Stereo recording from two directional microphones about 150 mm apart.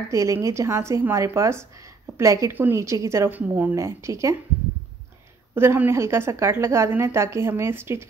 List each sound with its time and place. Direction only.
0.1 s a woman's voice: 20° right (ahead or behind)
5.5 s a woman's voice: 15° right (ahead or behind)